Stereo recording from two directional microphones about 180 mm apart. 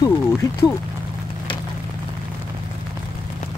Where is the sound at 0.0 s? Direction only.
15° left (ahead or behind).